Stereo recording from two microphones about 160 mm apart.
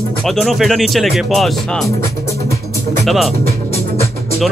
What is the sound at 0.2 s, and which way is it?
Speech, centre (ahead or behind).